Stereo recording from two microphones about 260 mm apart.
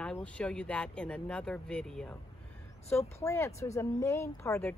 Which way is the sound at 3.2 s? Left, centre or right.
Centre.